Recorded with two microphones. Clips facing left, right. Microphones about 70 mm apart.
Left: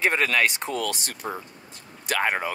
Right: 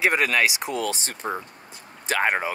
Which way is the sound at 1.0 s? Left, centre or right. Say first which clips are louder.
Right 3 dB; right.